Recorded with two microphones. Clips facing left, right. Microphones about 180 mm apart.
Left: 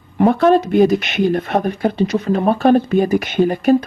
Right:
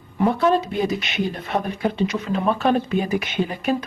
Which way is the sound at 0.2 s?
60° left (ahead or behind).